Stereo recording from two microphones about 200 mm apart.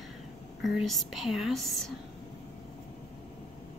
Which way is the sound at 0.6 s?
Centre (ahead or behind).